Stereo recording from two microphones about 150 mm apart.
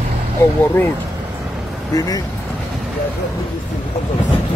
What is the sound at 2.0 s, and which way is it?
Speech, 25° left (ahead or behind).